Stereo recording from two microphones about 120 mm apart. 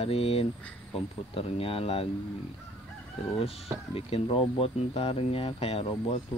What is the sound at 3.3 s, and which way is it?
Speech, 55° left (ahead or behind).